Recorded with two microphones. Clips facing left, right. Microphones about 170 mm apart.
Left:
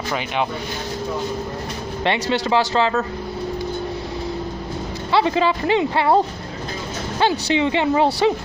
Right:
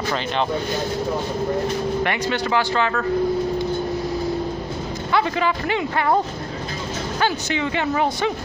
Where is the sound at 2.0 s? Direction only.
30° left (ahead or behind).